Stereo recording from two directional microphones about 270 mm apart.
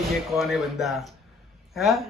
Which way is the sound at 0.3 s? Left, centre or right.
Centre.